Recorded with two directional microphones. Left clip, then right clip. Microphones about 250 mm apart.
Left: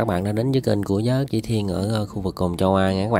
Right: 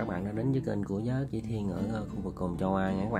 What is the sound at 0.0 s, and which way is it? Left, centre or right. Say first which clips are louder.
Speech: left 11 dB; left.